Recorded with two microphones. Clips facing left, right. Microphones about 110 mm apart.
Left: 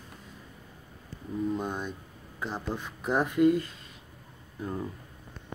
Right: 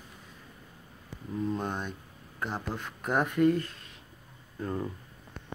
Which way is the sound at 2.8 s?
10° left (ahead or behind).